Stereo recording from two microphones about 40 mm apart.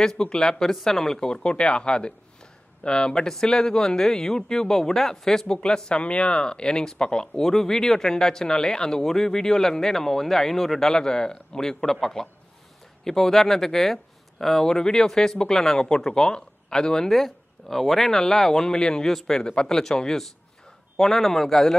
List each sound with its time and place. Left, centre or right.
0.0 s speech: centre
1.2 s speech: left
5.6 s speech: left
17.1 s speech: centre
18.7 s speech: left
19.0 s speech: centre